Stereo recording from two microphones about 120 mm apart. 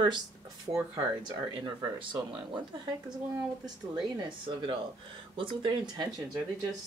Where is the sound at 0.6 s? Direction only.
30° right (ahead or behind).